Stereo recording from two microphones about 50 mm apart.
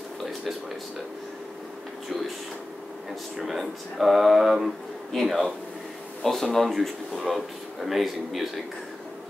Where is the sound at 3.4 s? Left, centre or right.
Centre.